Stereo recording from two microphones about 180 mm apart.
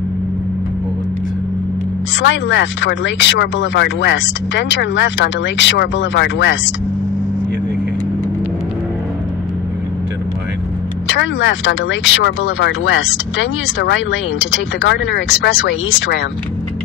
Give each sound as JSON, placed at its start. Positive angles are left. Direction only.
{"t": 2.2, "sound": "speech", "side_deg": 90}
{"t": 11.1, "sound": "speech", "side_deg": 90}
{"t": 14.8, "sound": "speech", "side_deg": 80}